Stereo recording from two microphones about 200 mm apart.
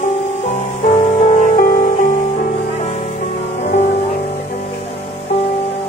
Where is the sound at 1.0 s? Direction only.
35° left (ahead or behind).